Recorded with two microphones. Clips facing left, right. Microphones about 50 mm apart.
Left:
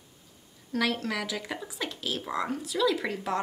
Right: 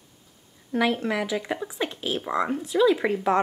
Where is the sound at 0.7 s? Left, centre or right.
Right.